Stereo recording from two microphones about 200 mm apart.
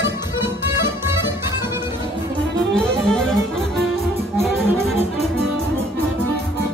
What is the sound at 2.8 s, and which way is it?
Music, 5° left (ahead or behind).